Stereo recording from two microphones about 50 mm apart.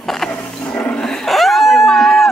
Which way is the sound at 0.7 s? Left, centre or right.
Left.